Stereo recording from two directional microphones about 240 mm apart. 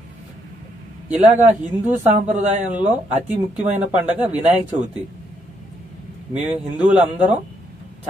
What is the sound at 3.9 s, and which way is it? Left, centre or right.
Speech, centre.